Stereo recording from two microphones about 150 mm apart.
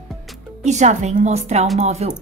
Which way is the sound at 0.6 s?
50° right (ahead or behind).